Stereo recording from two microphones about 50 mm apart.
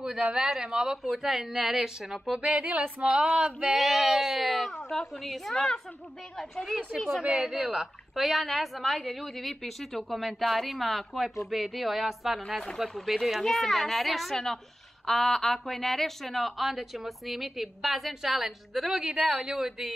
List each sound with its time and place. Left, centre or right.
0.0 s a woman's voice: right; by 2.4 s centre
2.4 s speech: right
3.7 s a woman's voice: centre